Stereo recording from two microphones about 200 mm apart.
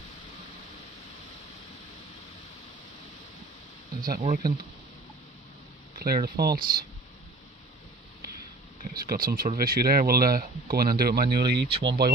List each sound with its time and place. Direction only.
4.0 s speech: 45° right (ahead or behind)
5.9 s speech: 50° right (ahead or behind)
8.8 s speech: 50° right (ahead or behind)